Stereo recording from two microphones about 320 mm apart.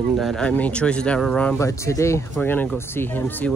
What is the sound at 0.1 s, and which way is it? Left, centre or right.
Speech, centre.